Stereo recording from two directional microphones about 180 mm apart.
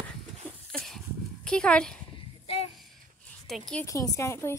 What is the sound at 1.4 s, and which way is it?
Speech, 5° left (ahead or behind).